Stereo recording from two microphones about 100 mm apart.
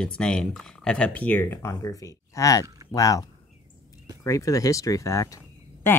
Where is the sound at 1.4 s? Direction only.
25° left (ahead or behind).